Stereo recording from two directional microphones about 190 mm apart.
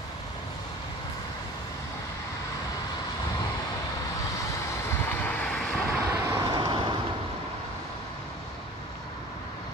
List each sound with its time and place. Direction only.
5.2 s vehicle: 5° left (ahead or behind)
5.9 s vehicle: 15° right (ahead or behind)